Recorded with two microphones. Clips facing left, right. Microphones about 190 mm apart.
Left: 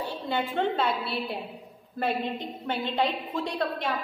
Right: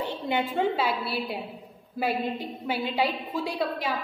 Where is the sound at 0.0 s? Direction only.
15° right (ahead or behind).